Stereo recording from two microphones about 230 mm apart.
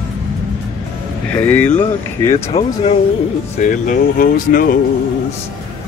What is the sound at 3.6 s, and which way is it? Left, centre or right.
Speech, left.